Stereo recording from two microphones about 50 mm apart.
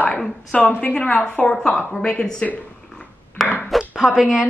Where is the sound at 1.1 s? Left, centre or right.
Centre.